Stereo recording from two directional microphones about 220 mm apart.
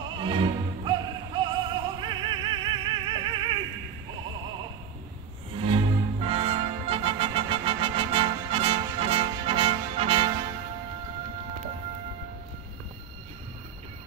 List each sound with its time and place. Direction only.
0.2 s music: 20° right (ahead or behind)
5.6 s music: 25° right (ahead or behind)